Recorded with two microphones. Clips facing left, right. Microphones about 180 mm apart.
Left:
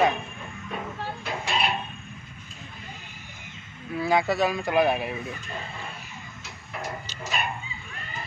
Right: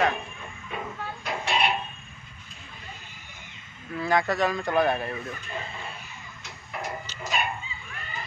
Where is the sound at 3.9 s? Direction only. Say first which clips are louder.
Left 1 dB; 10° left (ahead or behind).